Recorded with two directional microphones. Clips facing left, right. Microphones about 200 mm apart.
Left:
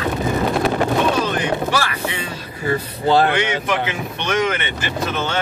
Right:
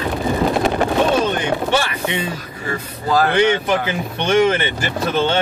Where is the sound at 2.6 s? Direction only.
30° left (ahead or behind).